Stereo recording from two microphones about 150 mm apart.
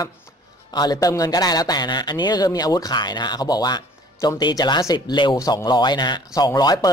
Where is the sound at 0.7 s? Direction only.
25° left (ahead or behind).